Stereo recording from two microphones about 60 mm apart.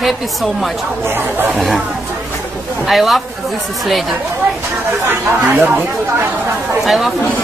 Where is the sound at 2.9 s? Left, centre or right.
Centre.